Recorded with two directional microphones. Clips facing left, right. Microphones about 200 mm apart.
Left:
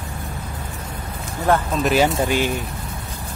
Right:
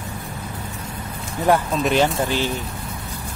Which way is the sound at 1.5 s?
15° right (ahead or behind).